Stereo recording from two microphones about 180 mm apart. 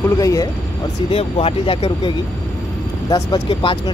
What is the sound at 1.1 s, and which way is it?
Speech, 30° left (ahead or behind).